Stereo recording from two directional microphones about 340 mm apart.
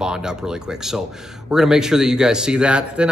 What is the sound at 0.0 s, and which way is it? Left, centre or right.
Speech, centre.